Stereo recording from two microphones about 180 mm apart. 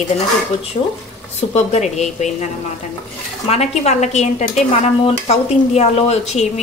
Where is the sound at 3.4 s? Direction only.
35° left (ahead or behind).